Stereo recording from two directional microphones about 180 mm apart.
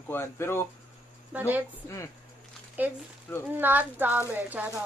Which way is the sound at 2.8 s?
10° right (ahead or behind).